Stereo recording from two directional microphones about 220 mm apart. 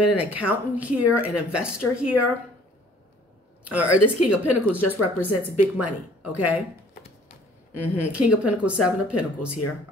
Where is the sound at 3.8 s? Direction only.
90° left.